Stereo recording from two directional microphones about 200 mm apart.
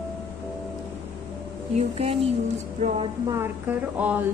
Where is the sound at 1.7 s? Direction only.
30° right (ahead or behind).